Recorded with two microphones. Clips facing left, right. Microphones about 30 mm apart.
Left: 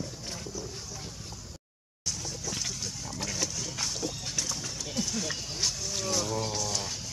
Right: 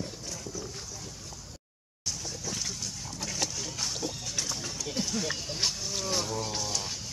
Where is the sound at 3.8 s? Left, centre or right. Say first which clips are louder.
Even; centre.